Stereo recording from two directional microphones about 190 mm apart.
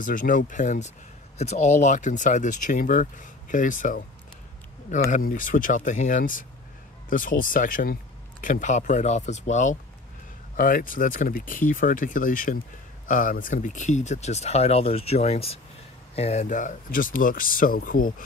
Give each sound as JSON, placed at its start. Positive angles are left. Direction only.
{"t": 0.0, "sound": "speech", "side_deg": 45}
{"t": 5.1, "sound": "speech", "side_deg": 45}